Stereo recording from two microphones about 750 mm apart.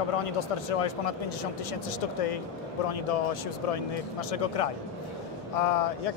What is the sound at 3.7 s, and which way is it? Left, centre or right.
Speech, left.